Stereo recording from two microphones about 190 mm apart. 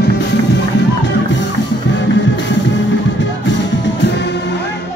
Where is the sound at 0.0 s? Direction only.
60° left (ahead or behind).